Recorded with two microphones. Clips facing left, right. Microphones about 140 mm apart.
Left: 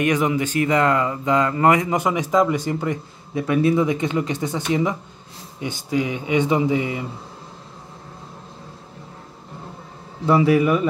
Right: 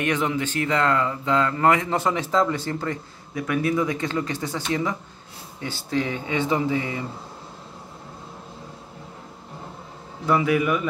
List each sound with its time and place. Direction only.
0.0 s speech: 10° left (ahead or behind)
10.2 s speech: 30° left (ahead or behind)